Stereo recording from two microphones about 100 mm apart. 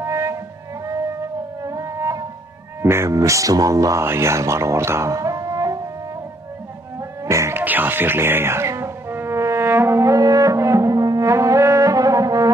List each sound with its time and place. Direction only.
0.0 s music: 30° right (ahead or behind)
1.6 s wind instrument: 35° right (ahead or behind)
2.8 s speech: 25° right (ahead or behind)
7.0 s music: 30° right (ahead or behind)
7.6 s music: 20° right (ahead or behind); by 12.4 s 35° right (ahead or behind)